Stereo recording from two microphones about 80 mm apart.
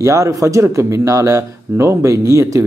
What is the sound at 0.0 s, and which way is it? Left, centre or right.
Speech, right.